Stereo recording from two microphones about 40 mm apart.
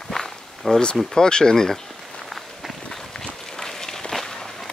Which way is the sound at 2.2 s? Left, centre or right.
Centre.